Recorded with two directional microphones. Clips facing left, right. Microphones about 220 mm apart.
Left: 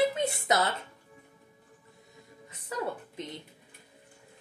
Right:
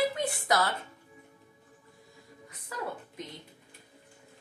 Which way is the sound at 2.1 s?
25° left (ahead or behind).